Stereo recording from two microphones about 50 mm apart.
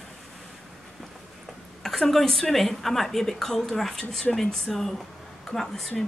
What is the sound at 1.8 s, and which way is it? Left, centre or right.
A woman's voice, centre.